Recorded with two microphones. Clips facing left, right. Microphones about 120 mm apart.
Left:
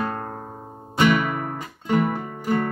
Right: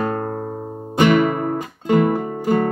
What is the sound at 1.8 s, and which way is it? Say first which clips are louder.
Music: right 5 dB; 50° right (ahead or behind).